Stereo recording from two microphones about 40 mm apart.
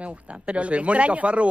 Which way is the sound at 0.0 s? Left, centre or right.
Right.